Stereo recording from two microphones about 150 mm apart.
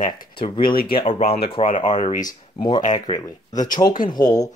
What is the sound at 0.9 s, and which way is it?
Speech, 40° left (ahead or behind).